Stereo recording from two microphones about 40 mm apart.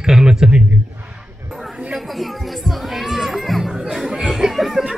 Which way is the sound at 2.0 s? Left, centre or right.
Centre.